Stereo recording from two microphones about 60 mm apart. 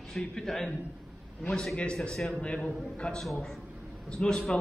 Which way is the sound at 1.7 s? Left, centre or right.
Centre.